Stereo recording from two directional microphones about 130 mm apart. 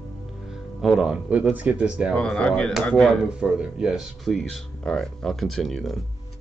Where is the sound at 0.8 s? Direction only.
Centre (ahead or behind).